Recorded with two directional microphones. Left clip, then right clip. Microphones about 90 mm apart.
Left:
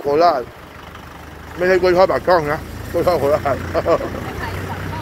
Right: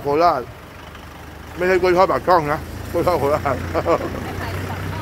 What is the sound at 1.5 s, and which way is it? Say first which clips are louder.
Speech: left 2 dB; 45° right (ahead or behind).